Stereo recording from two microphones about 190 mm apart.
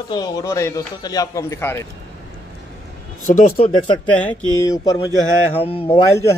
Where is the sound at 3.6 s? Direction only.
30° left (ahead or behind).